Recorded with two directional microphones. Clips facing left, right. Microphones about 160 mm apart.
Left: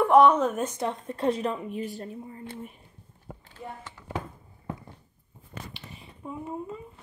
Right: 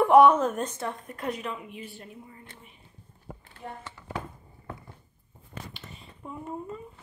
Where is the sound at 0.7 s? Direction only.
20° left (ahead or behind); by 2.4 s 35° left (ahead or behind).